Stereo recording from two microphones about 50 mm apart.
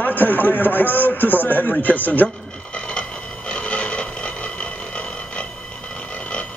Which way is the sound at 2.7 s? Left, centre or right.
Centre.